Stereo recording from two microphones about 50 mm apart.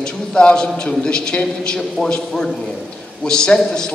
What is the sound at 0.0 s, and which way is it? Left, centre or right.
A man's voice, centre.